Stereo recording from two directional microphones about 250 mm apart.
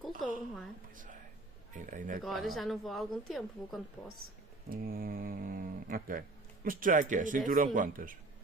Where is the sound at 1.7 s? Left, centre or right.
Right.